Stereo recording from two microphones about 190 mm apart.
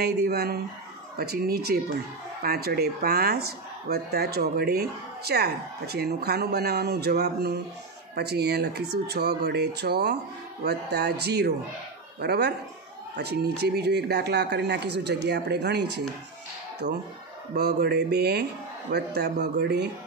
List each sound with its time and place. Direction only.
0.0 s speech: 55° right (ahead or behind)